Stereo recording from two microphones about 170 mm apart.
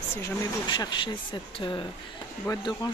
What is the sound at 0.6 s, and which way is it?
Speech, 25° left (ahead or behind).